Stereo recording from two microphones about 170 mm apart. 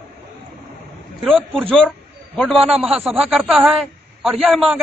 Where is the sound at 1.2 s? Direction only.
Centre (ahead or behind).